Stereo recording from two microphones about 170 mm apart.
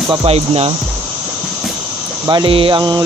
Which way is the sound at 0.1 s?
35° right (ahead or behind).